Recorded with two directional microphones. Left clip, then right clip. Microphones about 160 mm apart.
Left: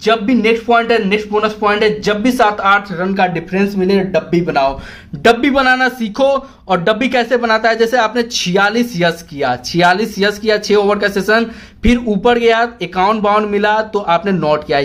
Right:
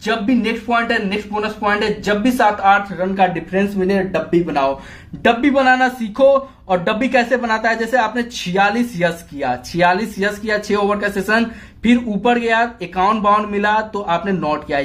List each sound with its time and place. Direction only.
0.0 s speech: 40° left (ahead or behind)